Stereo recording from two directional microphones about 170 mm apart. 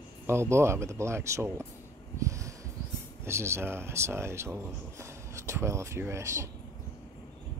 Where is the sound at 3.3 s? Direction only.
15° right (ahead or behind).